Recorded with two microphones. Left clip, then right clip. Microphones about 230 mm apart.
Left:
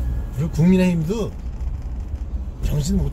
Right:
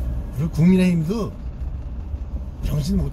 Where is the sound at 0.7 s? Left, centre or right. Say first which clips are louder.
Left 1 dB; centre.